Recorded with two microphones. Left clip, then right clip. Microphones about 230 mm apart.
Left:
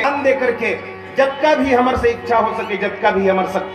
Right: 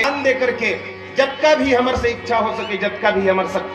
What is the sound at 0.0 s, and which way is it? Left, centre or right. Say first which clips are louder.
Speech: left 1 dB; left.